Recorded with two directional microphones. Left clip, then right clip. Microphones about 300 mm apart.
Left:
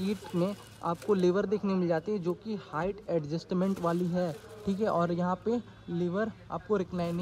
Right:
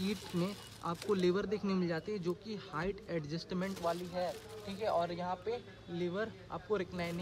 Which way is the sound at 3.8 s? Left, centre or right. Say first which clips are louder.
Left 2 dB; left.